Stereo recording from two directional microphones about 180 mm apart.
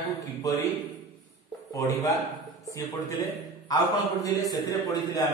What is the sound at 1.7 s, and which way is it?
Speech, 20° left (ahead or behind).